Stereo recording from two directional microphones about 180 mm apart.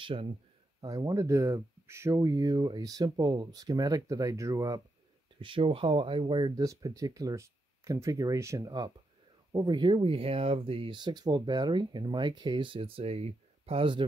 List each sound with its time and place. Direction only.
0.0 s speech: 30° right (ahead or behind)
0.7 s speech: 20° right (ahead or behind)
5.4 s speech: 30° right (ahead or behind)